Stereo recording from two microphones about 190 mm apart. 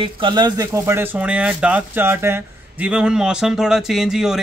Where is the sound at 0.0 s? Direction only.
25° right (ahead or behind).